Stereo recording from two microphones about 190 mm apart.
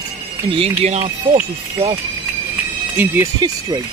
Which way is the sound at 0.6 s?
35° right (ahead or behind).